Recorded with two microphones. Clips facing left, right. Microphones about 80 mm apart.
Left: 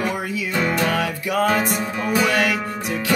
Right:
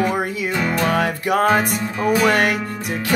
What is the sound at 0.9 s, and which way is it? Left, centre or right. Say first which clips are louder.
Music: right 4 dB; right.